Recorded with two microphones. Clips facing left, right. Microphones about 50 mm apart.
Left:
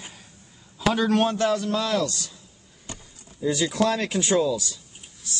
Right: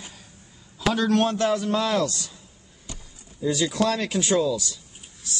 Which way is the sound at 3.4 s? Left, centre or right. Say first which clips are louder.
Even; centre.